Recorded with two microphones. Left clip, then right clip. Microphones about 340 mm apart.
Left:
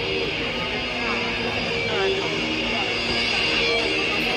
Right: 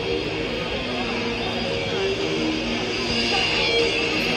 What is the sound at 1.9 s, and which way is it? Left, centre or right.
Vehicle, left.